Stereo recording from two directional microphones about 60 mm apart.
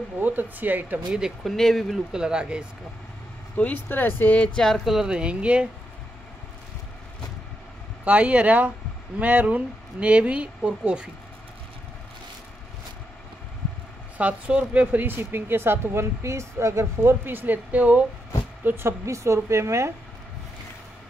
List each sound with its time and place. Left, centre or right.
0.2 s speech: right
1.4 s speech: centre
2.1 s speech: centre
3.5 s speech: left
3.9 s speech: left
4.6 s speech: centre
4.8 s speech: centre
8.0 s speech: right
14.1 s speech: right
17.6 s speech: right
18.6 s speech: right
19.0 s a woman's voice: right